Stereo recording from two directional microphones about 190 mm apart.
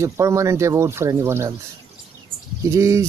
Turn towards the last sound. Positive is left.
turn(degrees=-15)  # may be behind; listen again after turning